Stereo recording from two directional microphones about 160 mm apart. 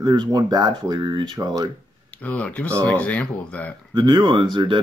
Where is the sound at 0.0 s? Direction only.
25° right (ahead or behind).